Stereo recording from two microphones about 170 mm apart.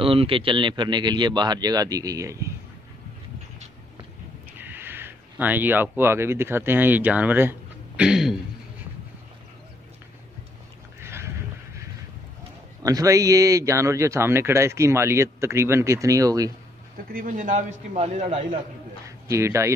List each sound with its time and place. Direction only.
0.0 s a man's voice: 30° right (ahead or behind); by 2.5 s 15° right (ahead or behind)
4.6 s speech: 10° right (ahead or behind)
11.0 s a sound: 15° right (ahead or behind)
12.8 s speech: 20° right (ahead or behind)
17.1 s a man's voice: 55° right (ahead or behind)
19.0 s speech: 20° right (ahead or behind)